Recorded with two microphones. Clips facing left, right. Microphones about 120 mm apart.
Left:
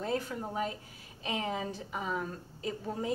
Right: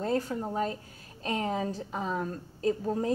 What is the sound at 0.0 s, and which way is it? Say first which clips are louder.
A woman's voice: right 4 dB; 35° right (ahead or behind).